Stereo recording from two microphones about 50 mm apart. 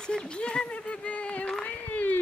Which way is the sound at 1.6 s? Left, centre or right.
Left.